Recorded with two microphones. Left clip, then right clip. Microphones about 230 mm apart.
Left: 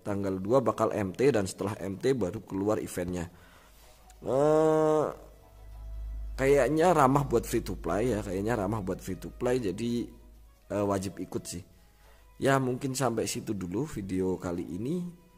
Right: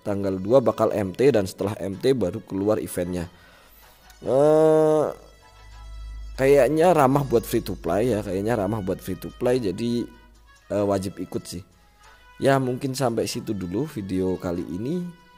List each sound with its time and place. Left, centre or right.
0.0 s a man's voice: centre
4.2 s mantra: centre
6.3 s a man's voice: centre